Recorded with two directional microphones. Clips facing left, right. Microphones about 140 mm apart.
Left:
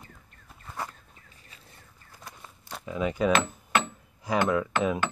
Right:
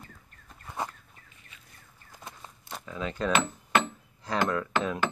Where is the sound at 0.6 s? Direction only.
20° right (ahead or behind).